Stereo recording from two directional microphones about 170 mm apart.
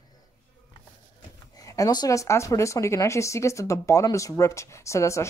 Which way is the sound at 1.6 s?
20° left (ahead or behind).